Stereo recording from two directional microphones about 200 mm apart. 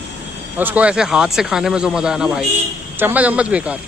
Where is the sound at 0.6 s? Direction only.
5° right (ahead or behind).